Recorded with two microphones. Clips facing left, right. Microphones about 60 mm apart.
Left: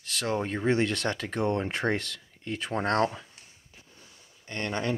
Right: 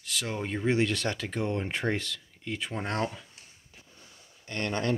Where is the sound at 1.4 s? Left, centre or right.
Left.